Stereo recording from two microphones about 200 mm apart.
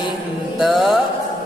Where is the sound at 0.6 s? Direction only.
Centre (ahead or behind).